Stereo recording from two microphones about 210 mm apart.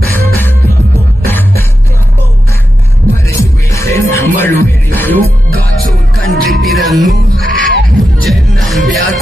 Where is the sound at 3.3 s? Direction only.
15° left (ahead or behind).